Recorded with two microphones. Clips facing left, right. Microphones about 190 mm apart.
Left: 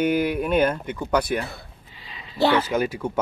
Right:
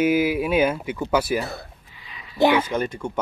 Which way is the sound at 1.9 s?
30° left (ahead or behind).